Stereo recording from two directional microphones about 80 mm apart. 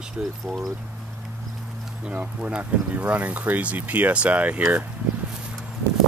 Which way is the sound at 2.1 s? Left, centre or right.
Centre.